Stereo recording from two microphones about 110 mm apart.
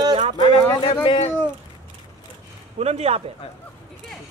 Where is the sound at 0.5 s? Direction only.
55° left (ahead or behind).